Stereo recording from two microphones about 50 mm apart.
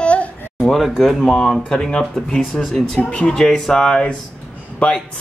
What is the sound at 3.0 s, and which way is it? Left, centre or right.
Speech, left.